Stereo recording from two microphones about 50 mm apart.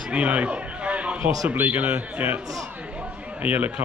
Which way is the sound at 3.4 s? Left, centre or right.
Right.